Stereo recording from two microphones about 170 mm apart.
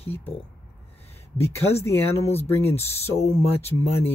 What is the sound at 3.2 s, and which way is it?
Speech, 40° left (ahead or behind).